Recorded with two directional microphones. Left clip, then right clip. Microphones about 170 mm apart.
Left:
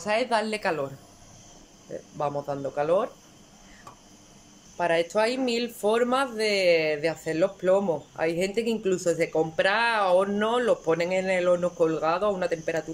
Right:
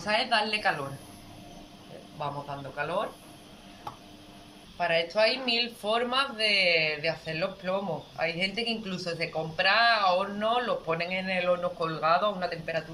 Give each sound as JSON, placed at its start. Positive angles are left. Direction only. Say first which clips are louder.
{"t": 0.0, "sound": "a woman's voice", "louder": "left 1 dB", "side_deg": 30}
{"t": 2.2, "sound": "speech", "louder": "left 6 dB", "side_deg": 45}
{"t": 4.7, "sound": "speech", "louder": "left 2 dB", "side_deg": 45}